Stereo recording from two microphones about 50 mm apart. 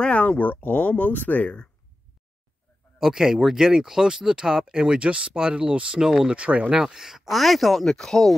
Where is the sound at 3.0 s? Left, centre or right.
Centre; by 6.8 s right.